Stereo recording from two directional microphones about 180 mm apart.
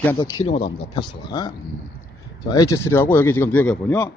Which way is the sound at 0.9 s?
25° left (ahead or behind).